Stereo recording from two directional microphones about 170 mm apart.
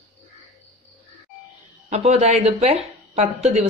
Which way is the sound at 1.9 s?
40° right (ahead or behind).